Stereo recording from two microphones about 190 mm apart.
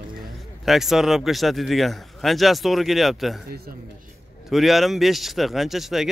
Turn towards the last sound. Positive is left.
turn(degrees=0)  # may be behind; listen again after turning